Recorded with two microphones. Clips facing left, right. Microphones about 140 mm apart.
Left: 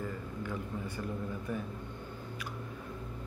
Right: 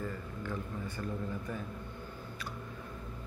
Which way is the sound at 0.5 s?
15° left (ahead or behind).